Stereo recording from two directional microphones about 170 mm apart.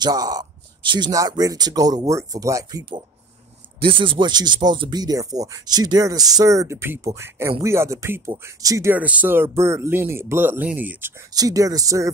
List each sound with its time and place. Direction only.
0.0 s speech: 20° right (ahead or behind)